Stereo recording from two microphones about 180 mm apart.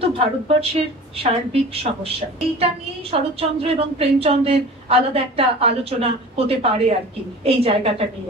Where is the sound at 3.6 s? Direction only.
35° right (ahead or behind).